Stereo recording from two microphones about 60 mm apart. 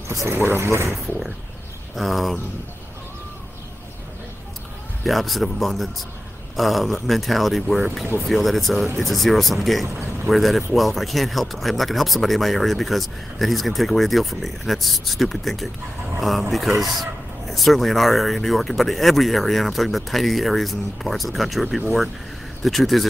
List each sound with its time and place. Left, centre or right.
0.1 s speech: right
2.0 s speech: centre
5.0 s speech: centre